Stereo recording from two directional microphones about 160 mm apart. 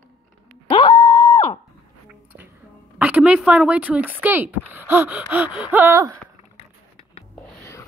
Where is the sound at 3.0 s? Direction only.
10° right (ahead or behind).